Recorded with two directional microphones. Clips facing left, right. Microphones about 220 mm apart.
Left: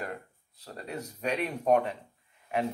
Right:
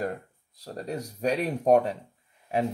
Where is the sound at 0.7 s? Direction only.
40° right (ahead or behind).